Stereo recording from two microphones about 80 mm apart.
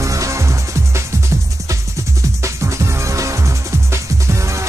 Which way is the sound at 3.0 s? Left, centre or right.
Right.